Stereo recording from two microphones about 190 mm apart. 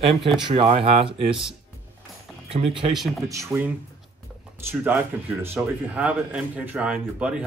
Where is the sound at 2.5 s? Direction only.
30° right (ahead or behind).